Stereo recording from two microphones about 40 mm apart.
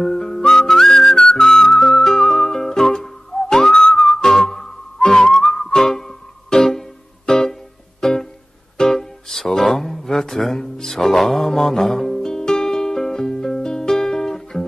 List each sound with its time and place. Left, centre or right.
0.0 s whistling: centre
1.1 s music: centre
1.5 s music: centre